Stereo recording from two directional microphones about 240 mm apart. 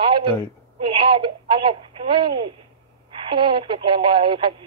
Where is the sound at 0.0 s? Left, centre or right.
Centre.